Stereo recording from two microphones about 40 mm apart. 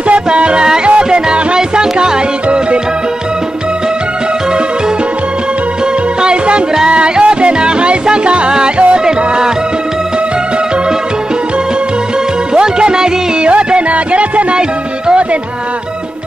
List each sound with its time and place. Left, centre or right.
0.1 s music: right
6.2 s music: right
12.5 s music: right